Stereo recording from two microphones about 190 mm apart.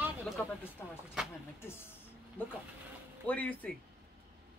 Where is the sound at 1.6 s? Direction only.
10° left (ahead or behind).